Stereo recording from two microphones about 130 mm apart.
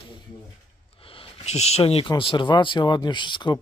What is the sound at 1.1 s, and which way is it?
Speech, 50° left (ahead or behind).